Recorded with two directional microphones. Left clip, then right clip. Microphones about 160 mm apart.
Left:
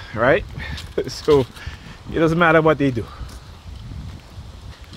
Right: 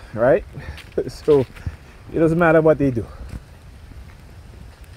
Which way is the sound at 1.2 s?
40° right (ahead or behind).